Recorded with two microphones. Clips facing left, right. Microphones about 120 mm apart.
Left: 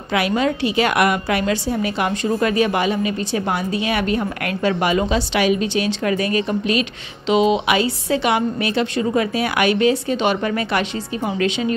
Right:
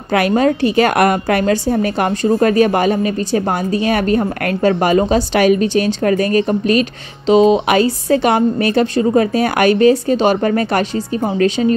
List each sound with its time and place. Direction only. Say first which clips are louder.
0.1 s a woman's voice: right 5 dB; 45° right (ahead or behind)